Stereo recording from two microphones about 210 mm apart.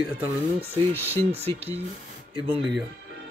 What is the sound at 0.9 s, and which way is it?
Speech, 10° left (ahead or behind).